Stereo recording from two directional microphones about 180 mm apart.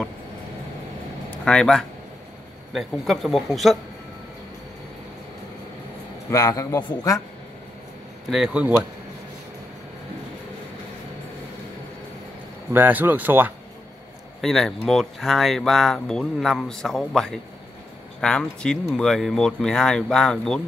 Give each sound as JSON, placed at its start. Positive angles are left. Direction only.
{"t": 1.3, "sound": "speech", "side_deg": 5}
{"t": 6.3, "sound": "a man's voice", "side_deg": 20}
{"t": 8.3, "sound": "speech", "side_deg": -5}
{"t": 12.7, "sound": "speech", "side_deg": -10}
{"t": 14.4, "sound": "speech", "side_deg": 0}